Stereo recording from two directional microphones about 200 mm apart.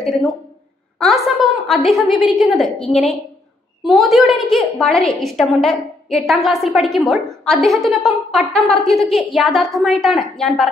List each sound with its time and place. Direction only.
0.9 s a woman's voice: centre (ahead or behind)